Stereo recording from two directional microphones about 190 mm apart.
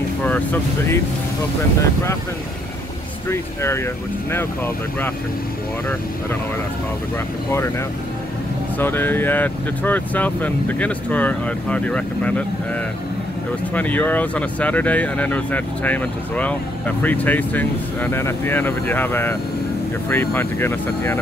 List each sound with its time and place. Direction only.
0.2 s speech: 10° left (ahead or behind)
3.3 s speech: 15° left (ahead or behind)
8.7 s speech: 10° left (ahead or behind)
13.7 s speech: 10° left (ahead or behind)